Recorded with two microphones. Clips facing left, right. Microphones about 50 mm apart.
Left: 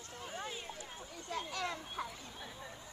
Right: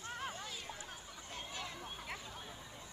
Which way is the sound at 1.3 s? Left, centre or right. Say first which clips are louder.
Left 7 dB; left.